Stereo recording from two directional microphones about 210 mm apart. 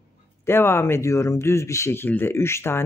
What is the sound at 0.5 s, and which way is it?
Speech, 10° left (ahead or behind).